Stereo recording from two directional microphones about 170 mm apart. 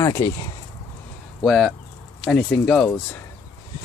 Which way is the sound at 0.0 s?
20° left (ahead or behind).